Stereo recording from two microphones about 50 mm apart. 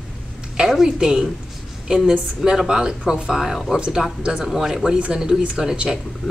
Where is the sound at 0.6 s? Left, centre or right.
Centre.